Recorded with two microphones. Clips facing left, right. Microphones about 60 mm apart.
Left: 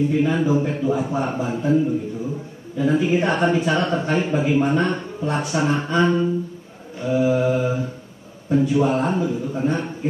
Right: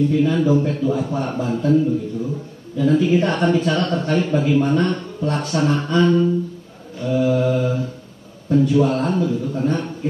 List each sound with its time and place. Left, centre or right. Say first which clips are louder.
0.0 s speech: right 2 dB; left
7.0 s mantra: right 1 dB; centre
8.5 s speech: right 2 dB; centre